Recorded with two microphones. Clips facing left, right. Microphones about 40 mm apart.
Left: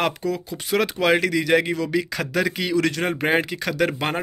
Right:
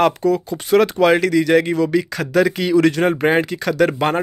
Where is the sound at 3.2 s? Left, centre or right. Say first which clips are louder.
Right 5 dB; centre.